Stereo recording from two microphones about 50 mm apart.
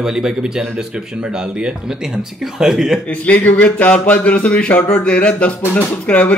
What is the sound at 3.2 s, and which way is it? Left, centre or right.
Speech, left.